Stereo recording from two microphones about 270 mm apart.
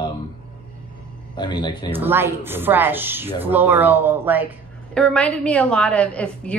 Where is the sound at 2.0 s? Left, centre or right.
Centre.